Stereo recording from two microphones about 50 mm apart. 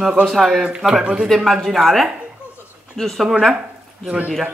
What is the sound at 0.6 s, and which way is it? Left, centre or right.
Speech, centre.